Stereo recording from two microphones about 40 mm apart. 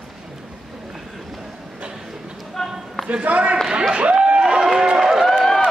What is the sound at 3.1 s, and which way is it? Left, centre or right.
Speech, right.